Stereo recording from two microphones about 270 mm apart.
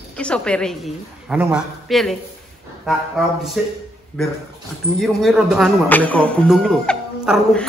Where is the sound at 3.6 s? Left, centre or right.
Centre.